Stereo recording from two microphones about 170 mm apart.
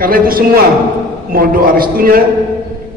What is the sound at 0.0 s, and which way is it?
A man's voice, 60° right (ahead or behind).